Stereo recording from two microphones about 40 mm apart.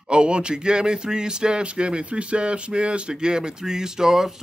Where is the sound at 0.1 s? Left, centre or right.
Right.